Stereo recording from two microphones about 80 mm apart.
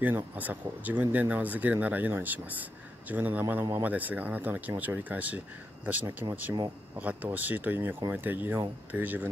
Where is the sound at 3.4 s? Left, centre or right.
Right.